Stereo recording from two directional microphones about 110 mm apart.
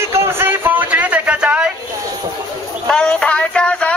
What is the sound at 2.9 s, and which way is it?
Music, 10° left (ahead or behind).